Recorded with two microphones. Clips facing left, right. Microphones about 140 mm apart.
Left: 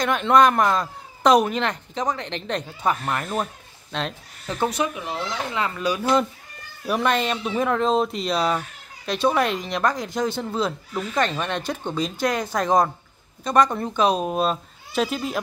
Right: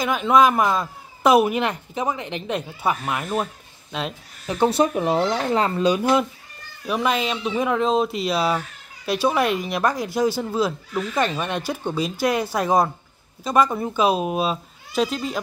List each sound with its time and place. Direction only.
0.0 s a woman's voice: centre (ahead or behind)
4.6 s speech: 35° right (ahead or behind)
4.9 s speech: 50° right (ahead or behind)
5.8 s speech: 20° right (ahead or behind)
6.9 s a woman's voice: centre (ahead or behind)